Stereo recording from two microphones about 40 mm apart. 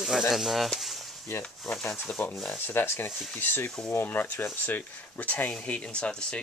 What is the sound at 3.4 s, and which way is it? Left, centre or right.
Speech, left.